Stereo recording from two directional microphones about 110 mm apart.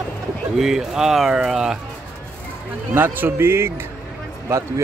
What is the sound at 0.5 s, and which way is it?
Speech, 5° right (ahead or behind).